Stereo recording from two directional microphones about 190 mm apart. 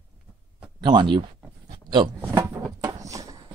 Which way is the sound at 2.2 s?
15° right (ahead or behind).